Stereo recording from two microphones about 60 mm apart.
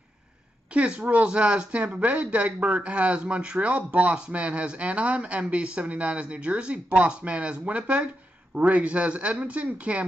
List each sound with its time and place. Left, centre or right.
0.7 s speech: right